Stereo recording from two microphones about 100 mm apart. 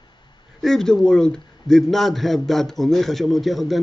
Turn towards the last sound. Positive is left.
turn(degrees=0)  # may be behind; listen again after turning